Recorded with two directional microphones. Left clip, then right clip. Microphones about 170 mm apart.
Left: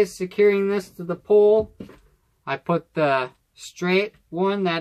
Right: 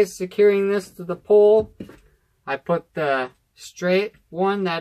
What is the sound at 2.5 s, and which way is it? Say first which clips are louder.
Speech: right 1 dB; 45° left (ahead or behind).